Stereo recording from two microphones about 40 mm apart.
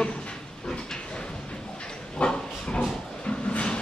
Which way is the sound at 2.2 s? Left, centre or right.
Left.